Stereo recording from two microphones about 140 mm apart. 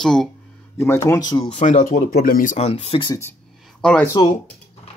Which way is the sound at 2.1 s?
90° left.